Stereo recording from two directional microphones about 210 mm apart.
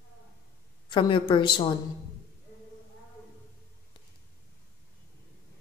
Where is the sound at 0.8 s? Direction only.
25° left (ahead or behind).